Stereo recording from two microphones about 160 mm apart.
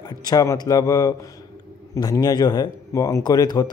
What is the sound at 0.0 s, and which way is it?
A man's voice, 25° left (ahead or behind).